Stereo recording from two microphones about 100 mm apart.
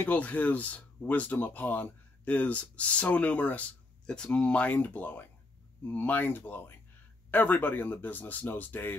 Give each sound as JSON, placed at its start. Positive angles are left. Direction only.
{"t": 0.0, "sound": "speech", "side_deg": 15}